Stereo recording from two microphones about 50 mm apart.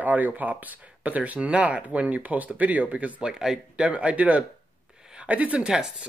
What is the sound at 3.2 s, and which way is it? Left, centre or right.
Speech, centre.